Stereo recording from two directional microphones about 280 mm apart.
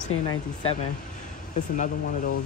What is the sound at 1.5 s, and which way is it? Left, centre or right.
Speech, left.